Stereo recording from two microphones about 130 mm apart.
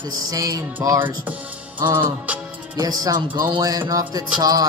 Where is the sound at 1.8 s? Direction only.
25° right (ahead or behind).